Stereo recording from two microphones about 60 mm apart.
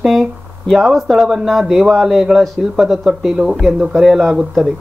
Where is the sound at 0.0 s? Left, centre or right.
Centre.